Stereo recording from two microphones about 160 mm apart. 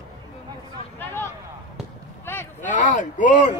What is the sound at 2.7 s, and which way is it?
Speech, 50° left (ahead or behind).